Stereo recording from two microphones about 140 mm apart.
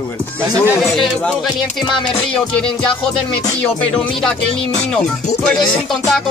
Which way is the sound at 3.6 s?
10° left (ahead or behind).